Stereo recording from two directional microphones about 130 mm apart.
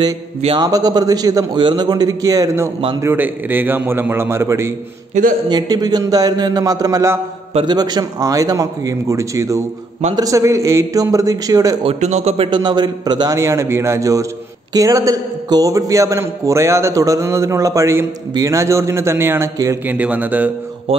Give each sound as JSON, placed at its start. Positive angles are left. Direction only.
{"t": 0.6, "sound": "a man's voice", "side_deg": -30}
{"t": 5.2, "sound": "speech", "side_deg": -65}
{"t": 5.5, "sound": "a man's voice", "side_deg": -30}
{"t": 11.8, "sound": "speech", "side_deg": -55}
{"t": 12.4, "sound": "a man's voice", "side_deg": -35}